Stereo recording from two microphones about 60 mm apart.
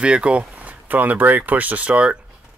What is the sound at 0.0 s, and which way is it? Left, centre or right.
Speech, centre.